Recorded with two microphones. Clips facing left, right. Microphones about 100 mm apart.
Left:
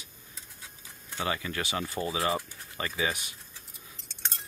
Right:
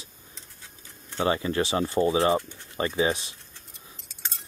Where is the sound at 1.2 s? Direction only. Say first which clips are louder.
Right 8 dB; 30° right (ahead or behind).